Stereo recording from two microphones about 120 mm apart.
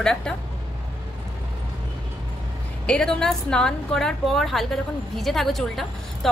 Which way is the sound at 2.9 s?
5° left (ahead or behind).